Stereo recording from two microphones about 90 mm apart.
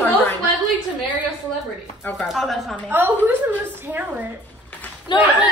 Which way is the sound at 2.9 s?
20° right (ahead or behind).